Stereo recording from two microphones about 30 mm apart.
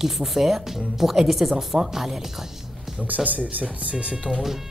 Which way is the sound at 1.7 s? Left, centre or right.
Right.